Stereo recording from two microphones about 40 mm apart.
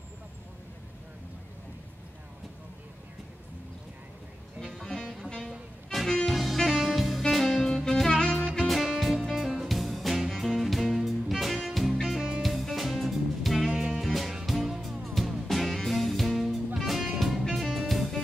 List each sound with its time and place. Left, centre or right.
4.8 s music: centre
8.5 s music: centre
12.0 s music: centre
12.4 s music: centre